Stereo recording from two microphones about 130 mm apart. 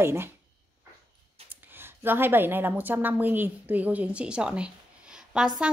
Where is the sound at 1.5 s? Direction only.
15° right (ahead or behind).